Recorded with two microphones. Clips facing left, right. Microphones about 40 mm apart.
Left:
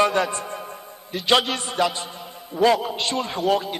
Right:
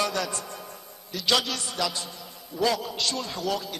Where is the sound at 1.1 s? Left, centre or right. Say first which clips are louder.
Left 6 dB; left.